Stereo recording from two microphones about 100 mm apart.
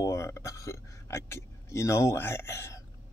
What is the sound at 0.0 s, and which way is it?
Speech, 30° left (ahead or behind).